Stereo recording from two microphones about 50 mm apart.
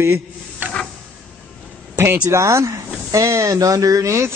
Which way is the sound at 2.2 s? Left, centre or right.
Right.